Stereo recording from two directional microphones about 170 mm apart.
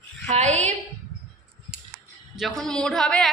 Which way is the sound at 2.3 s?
Centre (ahead or behind).